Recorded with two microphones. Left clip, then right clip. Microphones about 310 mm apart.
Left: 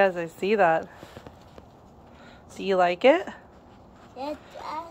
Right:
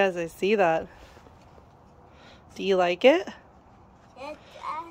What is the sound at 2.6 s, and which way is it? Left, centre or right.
Speech, centre.